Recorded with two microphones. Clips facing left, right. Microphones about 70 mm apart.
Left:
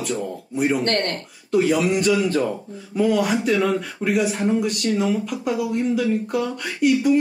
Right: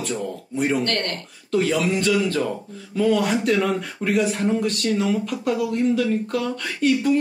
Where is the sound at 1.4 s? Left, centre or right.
Centre.